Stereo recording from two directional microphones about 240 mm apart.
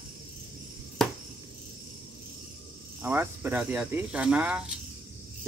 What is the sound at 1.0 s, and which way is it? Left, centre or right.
Cricket, centre.